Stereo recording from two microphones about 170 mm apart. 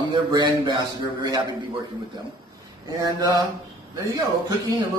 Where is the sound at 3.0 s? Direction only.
25° right (ahead or behind).